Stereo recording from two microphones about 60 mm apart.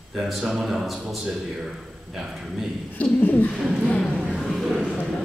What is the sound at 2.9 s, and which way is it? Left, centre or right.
Speech, left.